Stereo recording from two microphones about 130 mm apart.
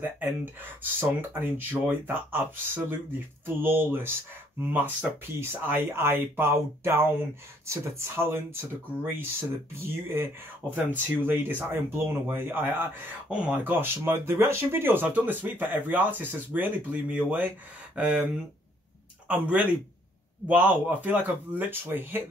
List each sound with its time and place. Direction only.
0.0 s a man's voice: 15° right (ahead or behind)